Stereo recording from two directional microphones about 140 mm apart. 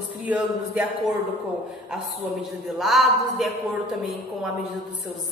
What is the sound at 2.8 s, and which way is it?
Speech, centre (ahead or behind).